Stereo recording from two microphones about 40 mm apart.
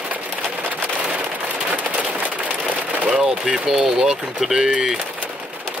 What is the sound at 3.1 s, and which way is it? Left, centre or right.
Speech, centre.